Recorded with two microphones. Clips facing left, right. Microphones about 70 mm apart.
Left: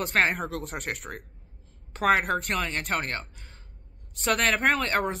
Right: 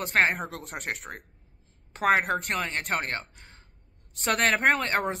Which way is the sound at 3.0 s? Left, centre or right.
Right.